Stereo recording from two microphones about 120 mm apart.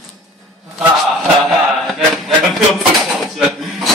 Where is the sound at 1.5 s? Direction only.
Centre (ahead or behind).